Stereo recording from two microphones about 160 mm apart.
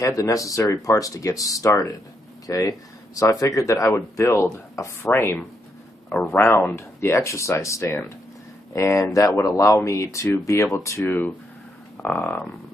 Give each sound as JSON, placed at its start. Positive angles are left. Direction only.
{"t": 0.0, "sound": "speech", "side_deg": 20}
{"t": 6.0, "sound": "speech", "side_deg": 0}
{"t": 6.3, "sound": "speech", "side_deg": 15}